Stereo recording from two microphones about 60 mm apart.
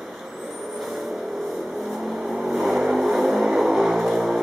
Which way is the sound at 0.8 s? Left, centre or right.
Centre.